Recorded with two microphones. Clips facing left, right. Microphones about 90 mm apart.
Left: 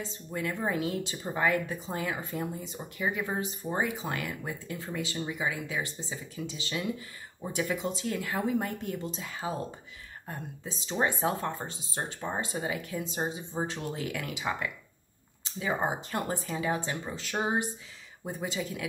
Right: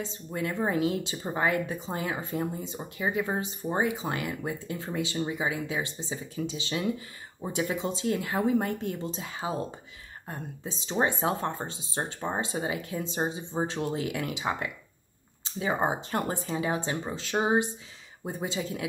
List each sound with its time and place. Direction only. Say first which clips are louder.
0.0 s speech: right 2 dB; 25° right (ahead or behind)